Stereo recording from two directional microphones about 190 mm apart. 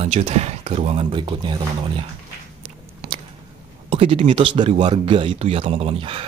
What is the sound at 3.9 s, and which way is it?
Speech, 30° right (ahead or behind).